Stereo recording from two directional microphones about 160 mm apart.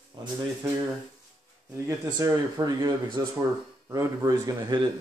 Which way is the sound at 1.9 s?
20° right (ahead or behind).